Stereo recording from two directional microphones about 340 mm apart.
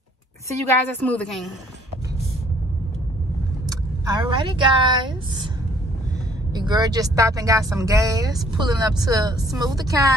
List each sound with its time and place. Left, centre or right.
0.5 s a woman's voice: centre
3.6 s speech: centre
6.5 s speech: centre